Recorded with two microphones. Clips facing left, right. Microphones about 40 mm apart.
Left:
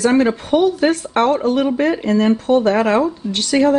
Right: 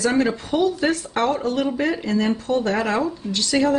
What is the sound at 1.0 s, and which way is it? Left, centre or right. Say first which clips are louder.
Speech: left 6 dB; left.